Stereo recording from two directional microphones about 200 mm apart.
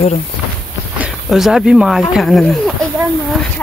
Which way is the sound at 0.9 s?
5° right (ahead or behind).